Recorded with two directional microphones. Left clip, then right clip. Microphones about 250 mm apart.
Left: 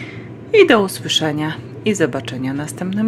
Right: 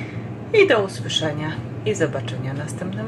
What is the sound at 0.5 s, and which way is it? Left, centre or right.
A woman's voice, left.